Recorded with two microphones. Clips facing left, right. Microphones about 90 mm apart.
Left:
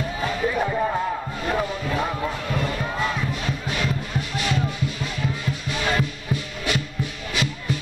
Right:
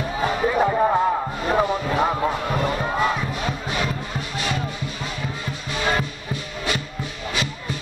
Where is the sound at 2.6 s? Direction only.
20° right (ahead or behind).